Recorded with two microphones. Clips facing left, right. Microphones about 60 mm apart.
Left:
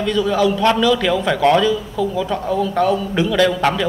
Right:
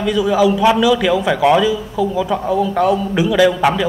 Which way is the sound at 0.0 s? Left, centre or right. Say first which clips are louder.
Right 2 dB; centre.